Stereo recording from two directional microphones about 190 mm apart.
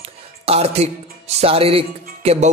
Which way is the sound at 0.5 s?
35° right (ahead or behind).